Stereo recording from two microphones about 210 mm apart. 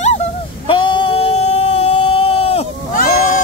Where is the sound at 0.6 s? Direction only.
25° left (ahead or behind).